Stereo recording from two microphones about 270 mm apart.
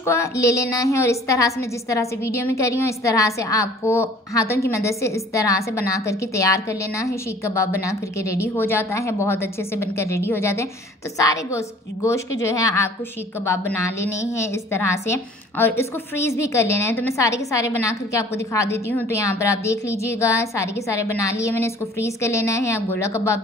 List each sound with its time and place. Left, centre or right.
0.0 s a woman's voice: centre